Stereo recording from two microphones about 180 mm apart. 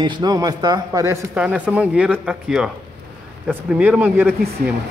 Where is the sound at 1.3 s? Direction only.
5° right (ahead or behind).